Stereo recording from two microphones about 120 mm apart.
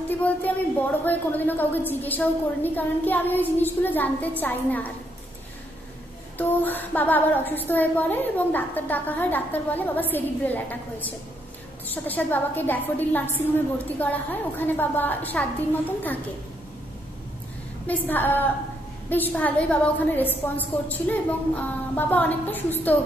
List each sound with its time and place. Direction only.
0.5 s a woman's voice: 10° left (ahead or behind)
6.3 s a woman's voice: 15° left (ahead or behind)
17.8 s a woman's voice: 15° left (ahead or behind)